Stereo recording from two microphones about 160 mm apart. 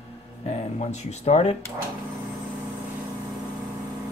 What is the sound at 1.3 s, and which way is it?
Speech, 45° left (ahead or behind).